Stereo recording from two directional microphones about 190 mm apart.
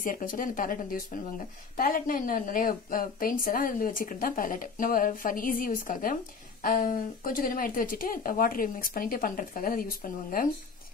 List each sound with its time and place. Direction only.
0.0 s a woman's voice: 45° left (ahead or behind)